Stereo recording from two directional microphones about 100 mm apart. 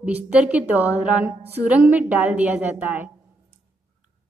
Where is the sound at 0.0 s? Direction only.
15° right (ahead or behind).